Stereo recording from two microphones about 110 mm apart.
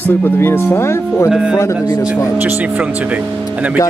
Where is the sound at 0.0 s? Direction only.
20° left (ahead or behind).